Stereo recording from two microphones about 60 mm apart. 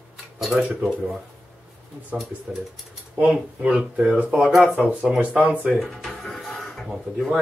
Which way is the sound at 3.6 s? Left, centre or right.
Centre.